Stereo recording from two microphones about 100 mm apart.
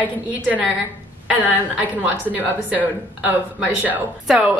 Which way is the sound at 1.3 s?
15° right (ahead or behind).